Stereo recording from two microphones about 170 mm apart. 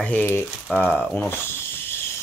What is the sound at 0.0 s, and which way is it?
Speech, 10° left (ahead or behind).